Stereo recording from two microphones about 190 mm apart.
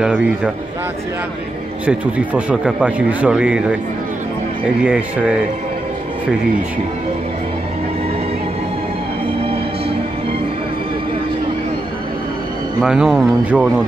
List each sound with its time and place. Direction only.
0.0 s speech: 5° right (ahead or behind)
1.9 s speech: 5° right (ahead or behind)
4.7 s speech: 5° right (ahead or behind)
9.4 s music: 30° right (ahead or behind)
12.8 s speech: 5° right (ahead or behind)